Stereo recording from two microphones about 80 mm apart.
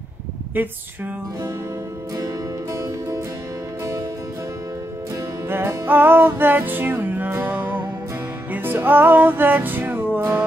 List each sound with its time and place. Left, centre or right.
0.6 s a sound: right
2.7 s music: right
5.5 s music: right